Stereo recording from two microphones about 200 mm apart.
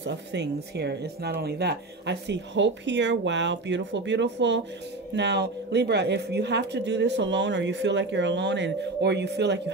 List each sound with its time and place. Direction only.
0.0 s speech: 60° right (ahead or behind)